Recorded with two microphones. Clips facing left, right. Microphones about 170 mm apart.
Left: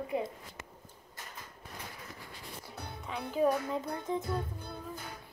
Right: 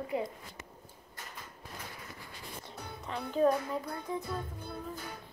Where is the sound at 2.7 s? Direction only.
5° left (ahead or behind).